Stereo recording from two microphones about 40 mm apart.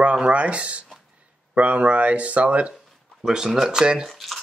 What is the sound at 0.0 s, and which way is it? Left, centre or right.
Speech, right.